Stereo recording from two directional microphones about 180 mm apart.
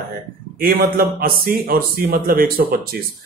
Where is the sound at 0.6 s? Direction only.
55° right (ahead or behind).